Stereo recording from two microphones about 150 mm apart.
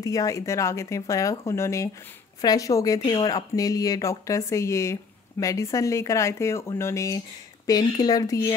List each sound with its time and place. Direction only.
0.0 s speech: 25° left (ahead or behind)